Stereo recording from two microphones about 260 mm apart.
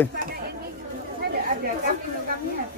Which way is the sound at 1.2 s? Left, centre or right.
Right.